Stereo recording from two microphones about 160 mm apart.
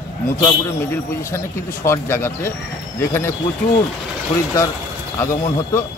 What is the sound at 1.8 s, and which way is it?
Speech, 15° left (ahead or behind).